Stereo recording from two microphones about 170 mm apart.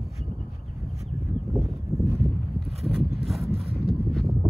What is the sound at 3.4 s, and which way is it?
Wind noise, 35° right (ahead or behind).